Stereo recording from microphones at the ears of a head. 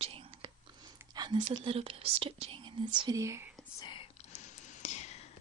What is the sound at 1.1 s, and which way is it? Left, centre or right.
Speech, right.